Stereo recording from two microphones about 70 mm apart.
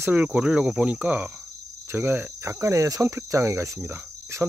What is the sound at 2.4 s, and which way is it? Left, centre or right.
Cricket, right.